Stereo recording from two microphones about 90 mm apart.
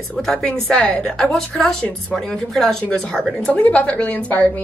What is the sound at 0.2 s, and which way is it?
A woman's voice, 10° left (ahead or behind).